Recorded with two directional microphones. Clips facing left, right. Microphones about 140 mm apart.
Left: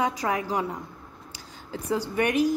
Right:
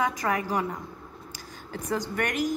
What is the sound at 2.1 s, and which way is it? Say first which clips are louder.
Speech: left 7 dB; 15° left (ahead or behind).